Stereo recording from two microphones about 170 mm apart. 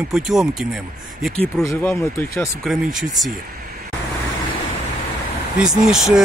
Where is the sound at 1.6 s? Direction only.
10° left (ahead or behind).